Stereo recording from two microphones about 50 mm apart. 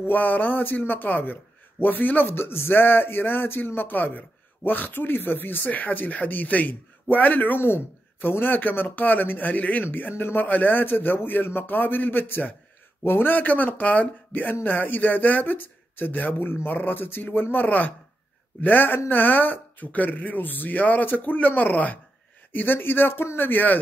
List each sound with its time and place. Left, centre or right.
0.0 s speech: left
22.5 s speech: left